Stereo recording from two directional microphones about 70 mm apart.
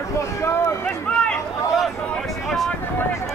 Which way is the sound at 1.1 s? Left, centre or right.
Centre.